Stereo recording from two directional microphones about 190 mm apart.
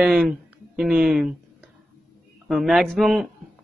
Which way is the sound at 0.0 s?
5° right (ahead or behind).